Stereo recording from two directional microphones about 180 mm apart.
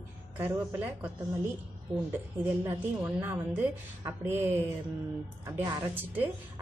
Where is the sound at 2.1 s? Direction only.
10° right (ahead or behind).